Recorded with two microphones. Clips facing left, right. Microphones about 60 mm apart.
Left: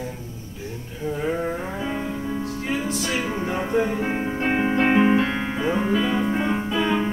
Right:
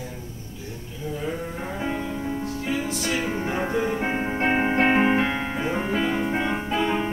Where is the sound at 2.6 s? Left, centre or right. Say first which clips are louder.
Left 1 dB; left.